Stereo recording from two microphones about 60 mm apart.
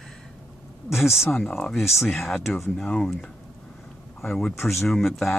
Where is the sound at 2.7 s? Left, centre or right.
Centre.